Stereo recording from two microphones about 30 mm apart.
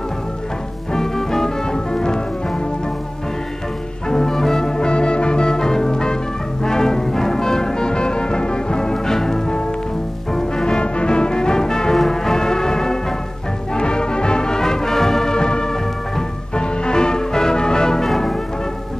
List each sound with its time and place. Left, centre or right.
0.9 s music: centre
4.1 s music: centre
10.8 s music: left
18.0 s music: centre